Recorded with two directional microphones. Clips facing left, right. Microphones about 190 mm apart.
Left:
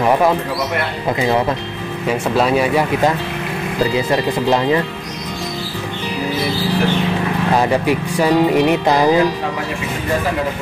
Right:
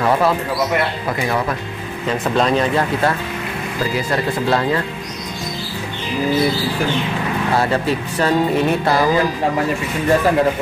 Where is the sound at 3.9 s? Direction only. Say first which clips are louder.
Left 3 dB; 20° left (ahead or behind).